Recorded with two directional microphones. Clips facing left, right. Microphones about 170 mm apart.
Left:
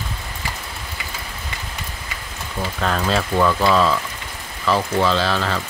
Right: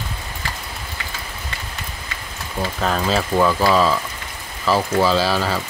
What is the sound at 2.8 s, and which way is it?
Speech, 5° right (ahead or behind).